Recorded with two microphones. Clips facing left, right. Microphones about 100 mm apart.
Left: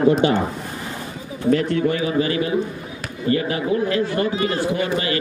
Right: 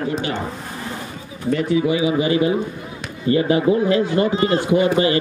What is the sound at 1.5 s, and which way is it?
A man's voice, 5° right (ahead or behind).